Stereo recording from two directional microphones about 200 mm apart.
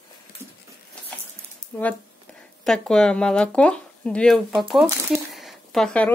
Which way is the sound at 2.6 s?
5° left (ahead or behind).